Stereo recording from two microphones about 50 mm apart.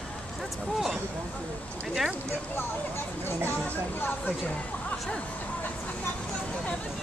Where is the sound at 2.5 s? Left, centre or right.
Left.